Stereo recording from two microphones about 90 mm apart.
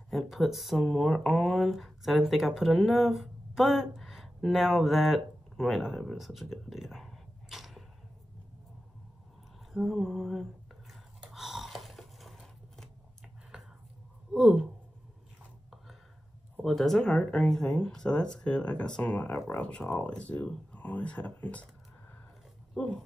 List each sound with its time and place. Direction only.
0.1 s speech: centre (ahead or behind)
9.7 s a sound: centre (ahead or behind)
14.3 s speech: 10° right (ahead or behind)
16.6 s speech: 5° left (ahead or behind)
22.8 s speech: 10° left (ahead or behind)